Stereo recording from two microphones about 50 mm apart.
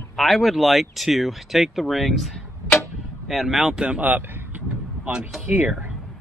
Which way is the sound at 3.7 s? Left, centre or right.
Centre.